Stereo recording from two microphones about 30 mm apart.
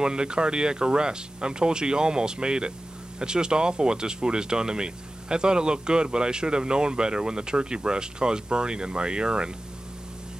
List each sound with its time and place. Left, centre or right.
0.0 s speech: right